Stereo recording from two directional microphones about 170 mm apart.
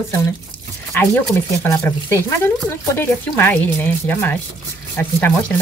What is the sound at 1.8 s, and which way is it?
Speech, 15° left (ahead or behind).